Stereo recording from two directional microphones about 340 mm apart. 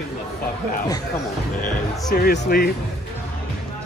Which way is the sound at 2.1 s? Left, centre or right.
Left.